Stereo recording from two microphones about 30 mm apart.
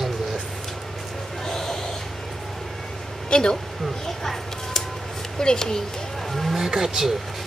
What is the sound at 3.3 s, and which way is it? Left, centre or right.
Speech, left.